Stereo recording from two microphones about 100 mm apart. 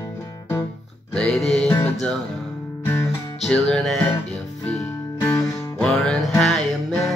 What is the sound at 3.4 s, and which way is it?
Music, 5° left (ahead or behind).